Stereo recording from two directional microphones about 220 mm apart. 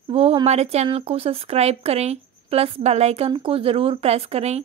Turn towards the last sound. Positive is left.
turn(degrees=-30)  # may be behind; listen again after turning